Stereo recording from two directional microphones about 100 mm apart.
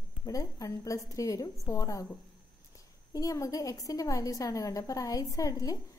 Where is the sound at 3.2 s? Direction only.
35° left (ahead or behind).